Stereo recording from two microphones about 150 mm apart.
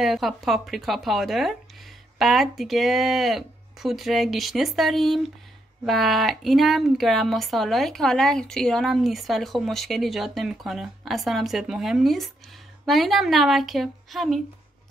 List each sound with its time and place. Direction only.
0.0 s speech: centre (ahead or behind)